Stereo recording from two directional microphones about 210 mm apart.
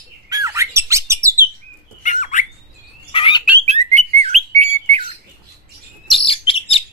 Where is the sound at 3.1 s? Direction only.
25° left (ahead or behind).